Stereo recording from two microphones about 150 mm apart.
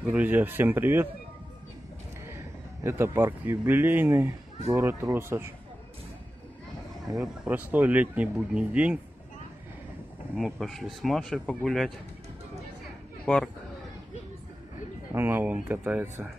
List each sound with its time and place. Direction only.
0.0 s speech: 10° right (ahead or behind)
2.2 s speech: 20° right (ahead or behind)
7.2 s speech: 10° right (ahead or behind)
10.3 s speech: centre (ahead or behind)
13.2 s a man's voice: 5° left (ahead or behind)
15.1 s speech: 15° right (ahead or behind)